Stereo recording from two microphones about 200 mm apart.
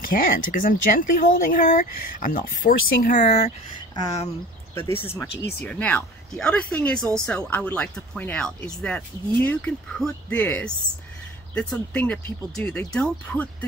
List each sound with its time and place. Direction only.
0.0 s speech: 45° left (ahead or behind)
3.9 s speech: 20° left (ahead or behind)